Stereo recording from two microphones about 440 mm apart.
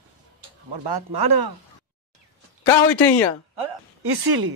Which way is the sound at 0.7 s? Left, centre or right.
Right.